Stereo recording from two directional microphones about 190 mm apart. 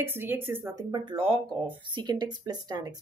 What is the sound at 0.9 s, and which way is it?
A woman's voice, 25° right (ahead or behind).